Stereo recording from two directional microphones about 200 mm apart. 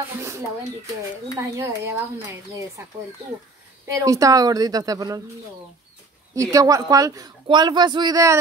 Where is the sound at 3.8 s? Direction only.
15° right (ahead or behind).